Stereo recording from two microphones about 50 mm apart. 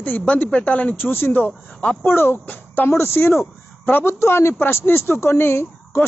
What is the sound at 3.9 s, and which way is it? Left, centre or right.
Speech, left.